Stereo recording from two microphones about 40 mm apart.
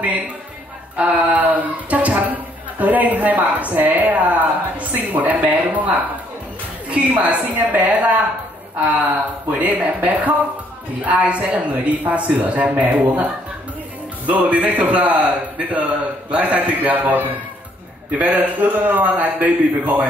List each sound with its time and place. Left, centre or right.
0.9 s a man's voice: right
7.1 s a man's voice: right